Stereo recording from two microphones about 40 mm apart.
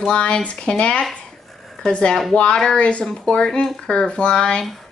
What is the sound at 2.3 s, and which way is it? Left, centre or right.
A woman's voice, left.